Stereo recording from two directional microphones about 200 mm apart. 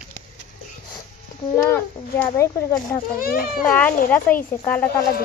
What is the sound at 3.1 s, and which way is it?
Speech, 45° left (ahead or behind).